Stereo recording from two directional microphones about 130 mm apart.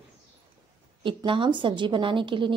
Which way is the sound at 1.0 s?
40° right (ahead or behind).